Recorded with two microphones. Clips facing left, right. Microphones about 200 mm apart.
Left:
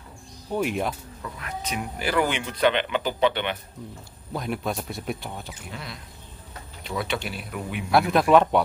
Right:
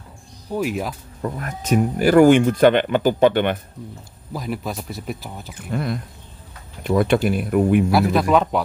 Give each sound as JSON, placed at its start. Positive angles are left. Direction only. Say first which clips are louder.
{"t": 0.6, "sound": "speech", "louder": "right 2 dB", "side_deg": 0}
{"t": 1.2, "sound": "speech", "louder": "right 7 dB", "side_deg": -45}
{"t": 4.3, "sound": "speech", "louder": "right 1 dB", "side_deg": 0}
{"t": 5.5, "sound": "speech", "louder": "right 12 dB", "side_deg": -55}
{"t": 7.9, "sound": "speech", "louder": "right 1 dB", "side_deg": 0}